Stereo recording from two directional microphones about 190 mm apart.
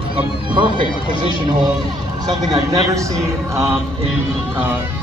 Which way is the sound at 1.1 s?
25° left (ahead or behind).